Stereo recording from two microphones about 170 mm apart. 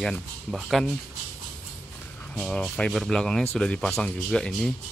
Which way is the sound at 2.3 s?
5° left (ahead or behind).